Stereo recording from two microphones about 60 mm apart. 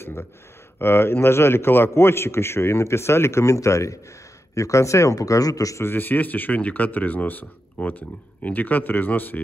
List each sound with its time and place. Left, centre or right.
0.7 s a man's voice: left
5.8 s speech: left